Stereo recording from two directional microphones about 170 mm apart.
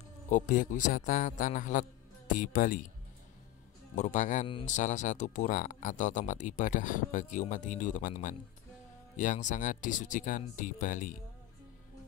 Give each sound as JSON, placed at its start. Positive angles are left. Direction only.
{"t": 0.3, "sound": "speech", "side_deg": 50}
{"t": 3.9, "sound": "speech", "side_deg": 45}